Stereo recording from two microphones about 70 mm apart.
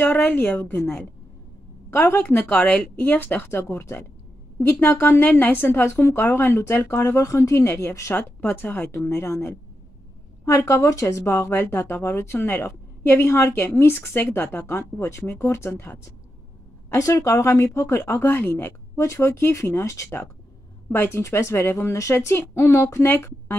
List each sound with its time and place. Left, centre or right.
0.0 s speech: left
5.2 s speech: left
7.2 s speech: left
16.9 s speech: left
18.9 s speech: left